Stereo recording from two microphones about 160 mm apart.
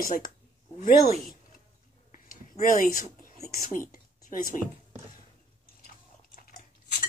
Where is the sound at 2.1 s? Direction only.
55° left (ahead or behind).